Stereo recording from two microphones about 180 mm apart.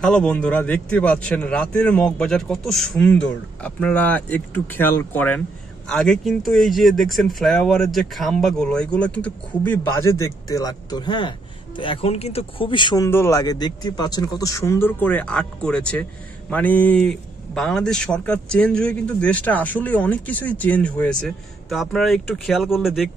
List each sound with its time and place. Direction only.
0.0 s speech: 5° left (ahead or behind)